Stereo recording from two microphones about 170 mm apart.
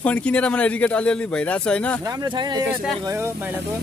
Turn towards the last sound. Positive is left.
turn(degrees=-15)  # may be behind; listen again after turning